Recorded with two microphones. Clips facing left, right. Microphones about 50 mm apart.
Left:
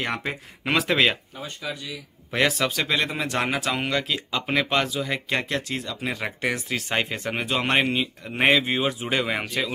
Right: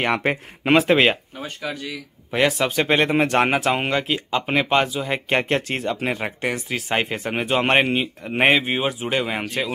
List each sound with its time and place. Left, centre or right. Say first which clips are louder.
0.0 s speech: right 7 dB; right
0.7 s speech: right 5 dB; right
1.3 s speech: right 3 dB; right
2.3 s speech: right 3 dB; centre
2.7 s speech: right 6 dB; right; by 5.2 s centre
5.3 s speech: right 8 dB; right
6.0 s speech: right 4 dB; right
6.4 s speech: right 1 dB; centre
7.4 s speech: right 5 dB; right; by 9.4 s centre